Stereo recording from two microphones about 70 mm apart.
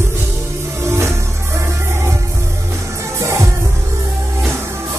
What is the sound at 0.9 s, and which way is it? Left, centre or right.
Music, right.